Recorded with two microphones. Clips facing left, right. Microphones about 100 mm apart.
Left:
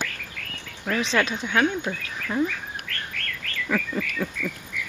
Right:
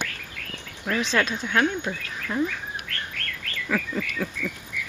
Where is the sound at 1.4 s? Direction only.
5° left (ahead or behind).